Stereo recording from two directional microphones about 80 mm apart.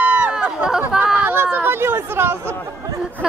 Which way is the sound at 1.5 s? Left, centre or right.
Right.